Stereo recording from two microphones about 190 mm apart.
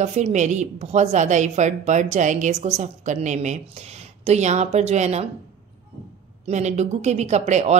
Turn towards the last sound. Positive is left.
turn(degrees=-35)  # may be behind; listen again after turning